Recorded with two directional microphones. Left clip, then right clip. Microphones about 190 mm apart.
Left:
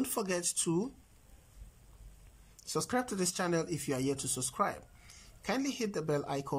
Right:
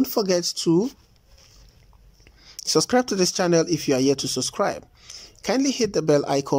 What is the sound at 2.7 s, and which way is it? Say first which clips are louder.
Speech: right 14 dB; 35° right (ahead or behind).